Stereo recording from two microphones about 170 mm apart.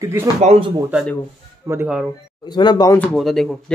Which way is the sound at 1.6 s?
15° right (ahead or behind).